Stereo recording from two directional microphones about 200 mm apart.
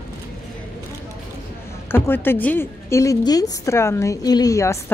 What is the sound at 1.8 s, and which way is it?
A woman's voice, 10° left (ahead or behind).